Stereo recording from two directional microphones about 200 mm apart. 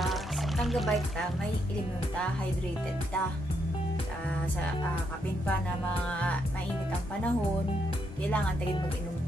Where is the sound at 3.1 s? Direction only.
5° left (ahead or behind).